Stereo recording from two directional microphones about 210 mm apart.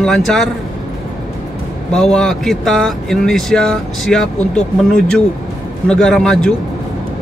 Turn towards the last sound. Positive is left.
turn(degrees=0)  # may be behind; listen again after turning